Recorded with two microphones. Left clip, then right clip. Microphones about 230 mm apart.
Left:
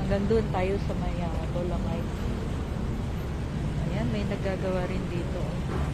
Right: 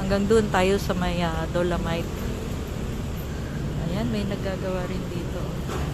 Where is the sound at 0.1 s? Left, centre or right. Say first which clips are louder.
Right 6 dB; centre.